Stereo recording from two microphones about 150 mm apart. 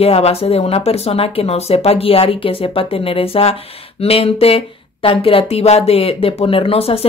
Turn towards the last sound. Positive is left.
turn(degrees=40)  # may be behind; listen again after turning